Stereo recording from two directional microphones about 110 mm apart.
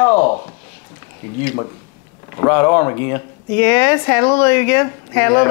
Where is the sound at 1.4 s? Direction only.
25° left (ahead or behind).